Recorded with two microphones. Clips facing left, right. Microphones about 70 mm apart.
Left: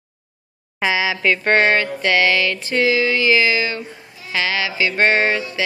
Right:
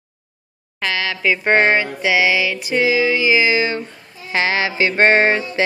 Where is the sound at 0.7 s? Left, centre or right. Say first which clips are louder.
Left 3 dB; centre.